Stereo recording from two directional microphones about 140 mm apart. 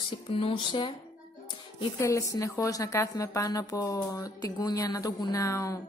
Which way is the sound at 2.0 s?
25° left (ahead or behind).